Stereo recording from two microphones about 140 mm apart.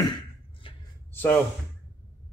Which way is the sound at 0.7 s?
40° left (ahead or behind).